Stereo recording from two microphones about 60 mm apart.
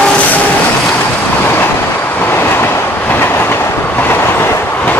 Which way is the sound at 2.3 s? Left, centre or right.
Left.